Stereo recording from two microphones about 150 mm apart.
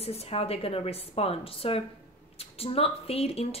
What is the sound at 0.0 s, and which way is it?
Speech, 40° left (ahead or behind).